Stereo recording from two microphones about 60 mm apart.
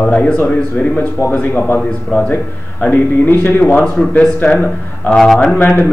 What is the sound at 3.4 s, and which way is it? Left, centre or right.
Speech, left.